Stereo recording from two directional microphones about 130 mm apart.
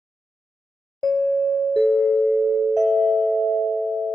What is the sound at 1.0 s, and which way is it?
Music, centre (ahead or behind).